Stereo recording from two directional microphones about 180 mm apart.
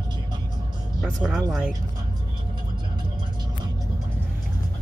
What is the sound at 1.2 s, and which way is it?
Speech, 5° right (ahead or behind).